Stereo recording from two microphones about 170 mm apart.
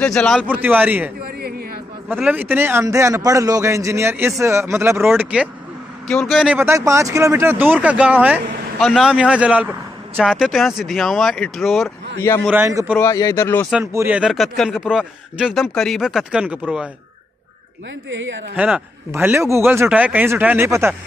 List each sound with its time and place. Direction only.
0.0 s speech: 5° left (ahead or behind)
0.5 s a man's voice: 10° right (ahead or behind)
12.4 s a man's voice: 15° right (ahead or behind)
12.9 s speech: 15° left (ahead or behind)
13.9 s speech: 10° right (ahead or behind)
18.1 s a woman's voice: 90° right
18.6 s a man's voice: 10° right (ahead or behind)